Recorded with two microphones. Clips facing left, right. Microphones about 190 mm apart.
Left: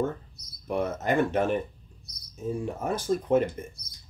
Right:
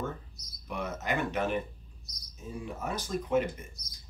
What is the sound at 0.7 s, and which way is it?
Speech, 50° left (ahead or behind).